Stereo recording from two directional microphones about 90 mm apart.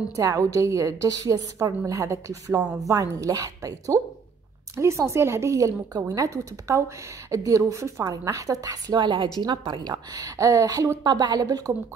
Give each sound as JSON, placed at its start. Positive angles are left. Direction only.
{"t": 0.1, "sound": "speech", "side_deg": -40}
{"t": 8.9, "sound": "a woman's voice", "side_deg": -60}
{"t": 11.1, "sound": "a woman's voice", "side_deg": -50}